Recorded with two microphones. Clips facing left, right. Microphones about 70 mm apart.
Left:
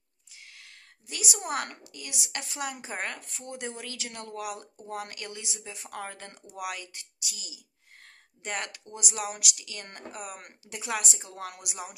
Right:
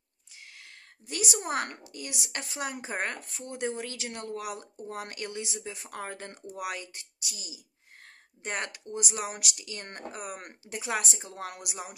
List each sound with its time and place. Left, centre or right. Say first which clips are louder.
0.6 s a woman's voice: right 2 dB; right